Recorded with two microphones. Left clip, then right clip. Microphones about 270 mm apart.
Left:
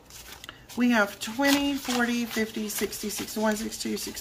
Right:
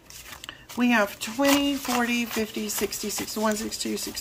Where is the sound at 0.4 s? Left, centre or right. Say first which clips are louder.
Right 1 dB; centre.